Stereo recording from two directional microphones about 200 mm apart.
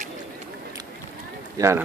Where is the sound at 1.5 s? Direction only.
15° right (ahead or behind).